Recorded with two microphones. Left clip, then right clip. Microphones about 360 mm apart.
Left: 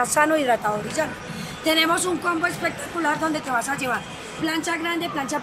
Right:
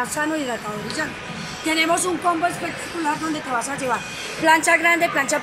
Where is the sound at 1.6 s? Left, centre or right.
Centre.